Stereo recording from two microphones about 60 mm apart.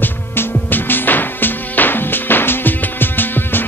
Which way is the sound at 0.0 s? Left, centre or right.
Left.